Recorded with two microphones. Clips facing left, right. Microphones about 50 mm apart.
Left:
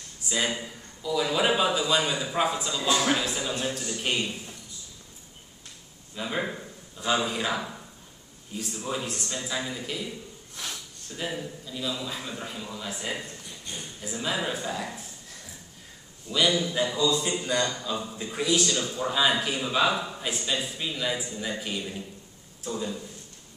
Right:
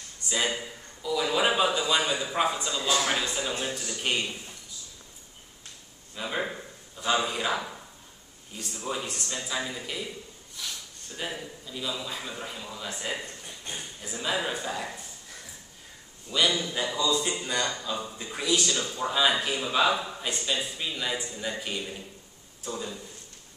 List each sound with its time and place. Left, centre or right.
0.5 s a man's voice: centre
6.1 s a man's voice: centre
10.5 s snort: left
11.1 s a man's voice: centre
16.3 s a man's voice: centre